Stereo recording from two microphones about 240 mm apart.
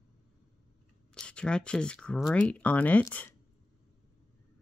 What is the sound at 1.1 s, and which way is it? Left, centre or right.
Speech, centre.